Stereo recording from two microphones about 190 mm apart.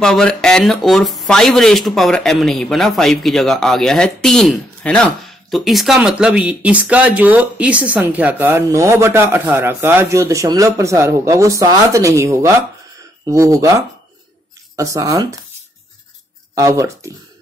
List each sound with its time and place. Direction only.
0.0 s speech: 5° left (ahead or behind); by 15.2 s 20° right (ahead or behind)
16.5 s speech: 15° right (ahead or behind)